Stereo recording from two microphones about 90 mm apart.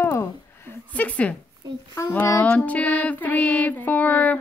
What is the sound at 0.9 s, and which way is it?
Music, 15° left (ahead or behind).